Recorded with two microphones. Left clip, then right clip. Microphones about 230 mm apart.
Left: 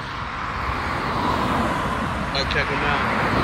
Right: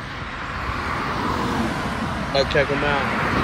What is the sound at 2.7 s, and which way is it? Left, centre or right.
Speech, left.